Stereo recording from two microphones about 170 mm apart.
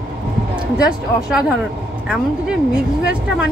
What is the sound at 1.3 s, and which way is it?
Speech, 5° right (ahead or behind).